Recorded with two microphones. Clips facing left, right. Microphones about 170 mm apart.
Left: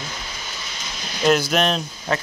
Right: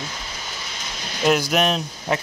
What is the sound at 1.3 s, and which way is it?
Speech, 15° right (ahead or behind).